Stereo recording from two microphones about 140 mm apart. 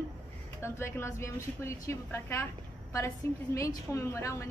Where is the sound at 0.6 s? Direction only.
20° left (ahead or behind).